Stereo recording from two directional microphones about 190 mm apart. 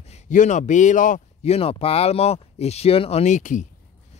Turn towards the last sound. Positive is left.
turn(degrees=40)  # may be behind; listen again after turning